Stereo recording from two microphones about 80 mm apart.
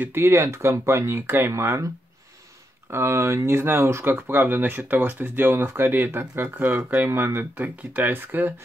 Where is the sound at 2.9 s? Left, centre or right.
Right.